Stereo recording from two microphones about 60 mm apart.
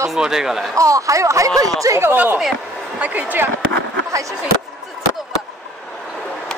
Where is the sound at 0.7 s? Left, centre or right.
Right.